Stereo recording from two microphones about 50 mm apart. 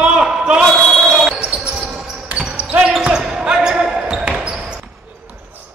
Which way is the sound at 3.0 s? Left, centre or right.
Centre.